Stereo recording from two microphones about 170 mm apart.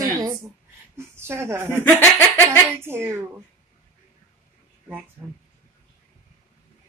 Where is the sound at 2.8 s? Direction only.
15° right (ahead or behind).